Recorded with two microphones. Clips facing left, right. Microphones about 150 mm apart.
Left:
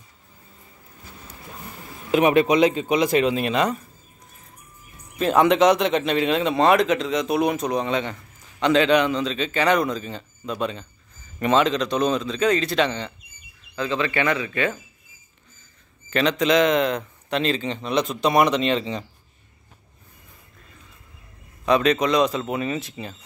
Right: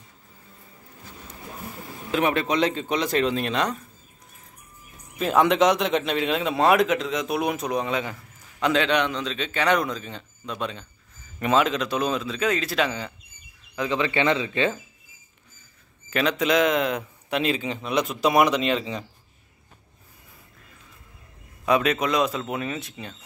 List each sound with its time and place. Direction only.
2.0 s speech: 15° left (ahead or behind)
5.1 s a man's voice: centre (ahead or behind)
13.7 s speech: 15° right (ahead or behind)
16.1 s a man's voice: 5° right (ahead or behind)
21.6 s a man's voice: 5° right (ahead or behind)